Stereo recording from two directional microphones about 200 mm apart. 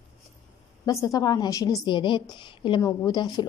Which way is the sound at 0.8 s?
20° left (ahead or behind).